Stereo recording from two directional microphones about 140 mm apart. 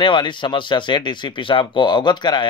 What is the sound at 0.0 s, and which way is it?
Speech, 35° left (ahead or behind).